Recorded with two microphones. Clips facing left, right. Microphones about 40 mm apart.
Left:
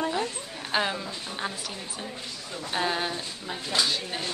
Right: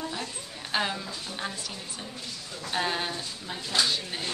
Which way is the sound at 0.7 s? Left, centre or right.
Centre.